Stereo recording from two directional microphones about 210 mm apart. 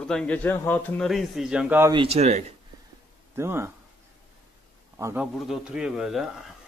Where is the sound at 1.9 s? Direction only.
30° right (ahead or behind).